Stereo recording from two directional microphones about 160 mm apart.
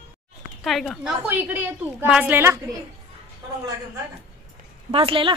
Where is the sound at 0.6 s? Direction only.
Centre (ahead or behind).